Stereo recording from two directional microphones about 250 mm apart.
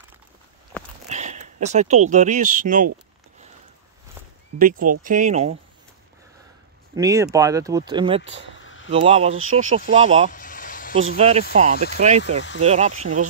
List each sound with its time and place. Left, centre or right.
1.0 s speech: right
4.6 s speech: right
7.0 s speech: centre
8.5 s a sound: left
8.9 s speech: right
10.3 s a sound: left
11.1 s speech: right